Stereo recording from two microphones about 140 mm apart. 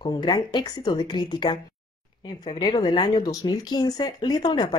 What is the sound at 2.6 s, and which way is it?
Speech, 30° left (ahead or behind).